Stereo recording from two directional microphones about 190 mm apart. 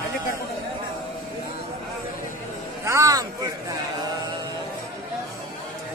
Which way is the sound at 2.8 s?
15° right (ahead or behind).